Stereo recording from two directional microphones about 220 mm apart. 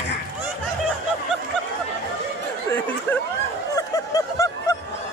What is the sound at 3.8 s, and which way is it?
Snicker, 15° left (ahead or behind).